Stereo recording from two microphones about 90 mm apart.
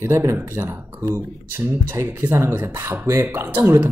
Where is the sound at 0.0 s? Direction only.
30° right (ahead or behind).